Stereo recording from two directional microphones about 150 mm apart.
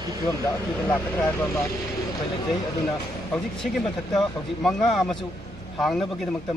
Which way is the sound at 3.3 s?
5° left (ahead or behind).